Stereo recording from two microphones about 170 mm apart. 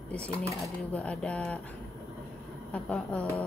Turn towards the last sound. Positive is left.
turn(degrees=10)  # may be behind; listen again after turning